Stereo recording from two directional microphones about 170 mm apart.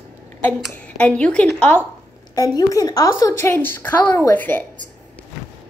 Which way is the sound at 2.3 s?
20° left (ahead or behind).